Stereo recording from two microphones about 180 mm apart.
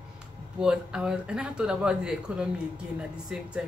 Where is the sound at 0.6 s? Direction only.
5° right (ahead or behind).